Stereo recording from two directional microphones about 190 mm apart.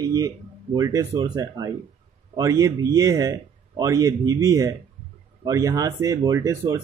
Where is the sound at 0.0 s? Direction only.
20° right (ahead or behind).